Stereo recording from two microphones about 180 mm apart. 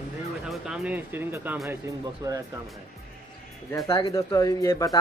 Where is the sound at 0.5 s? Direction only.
5° right (ahead or behind).